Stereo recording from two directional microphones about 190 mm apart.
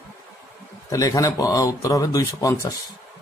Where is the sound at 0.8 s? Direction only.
20° left (ahead or behind).